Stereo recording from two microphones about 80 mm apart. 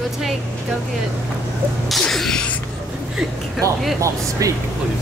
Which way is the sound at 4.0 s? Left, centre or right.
Right.